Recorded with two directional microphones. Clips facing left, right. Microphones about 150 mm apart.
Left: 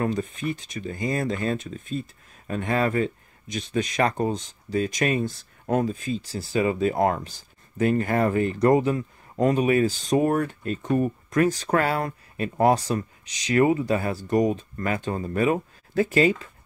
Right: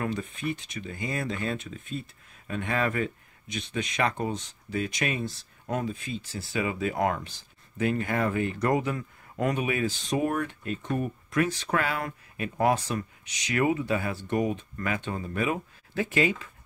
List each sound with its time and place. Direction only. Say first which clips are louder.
0.0 s speech: left 5 dB; 35° left (ahead or behind)